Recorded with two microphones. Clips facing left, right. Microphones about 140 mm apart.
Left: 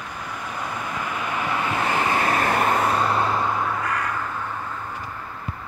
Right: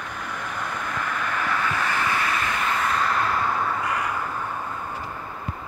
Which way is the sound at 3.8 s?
10° right (ahead or behind).